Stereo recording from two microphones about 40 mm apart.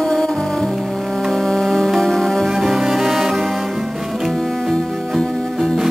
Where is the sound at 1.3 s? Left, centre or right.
Centre.